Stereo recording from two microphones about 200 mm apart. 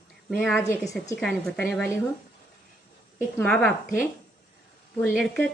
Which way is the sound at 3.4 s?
5° left (ahead or behind).